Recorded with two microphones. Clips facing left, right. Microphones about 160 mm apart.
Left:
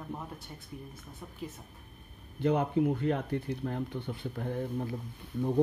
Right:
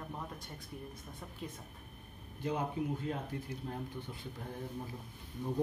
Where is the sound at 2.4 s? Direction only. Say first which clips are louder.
Left 9 dB; 60° left (ahead or behind).